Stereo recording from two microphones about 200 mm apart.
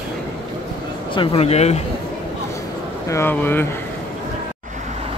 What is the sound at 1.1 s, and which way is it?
Speech, 30° left (ahead or behind).